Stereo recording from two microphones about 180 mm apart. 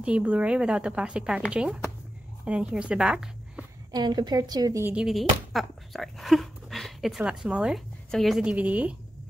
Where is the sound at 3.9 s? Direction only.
20° right (ahead or behind).